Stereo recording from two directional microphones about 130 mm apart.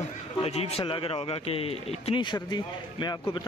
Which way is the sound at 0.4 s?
50° left (ahead or behind).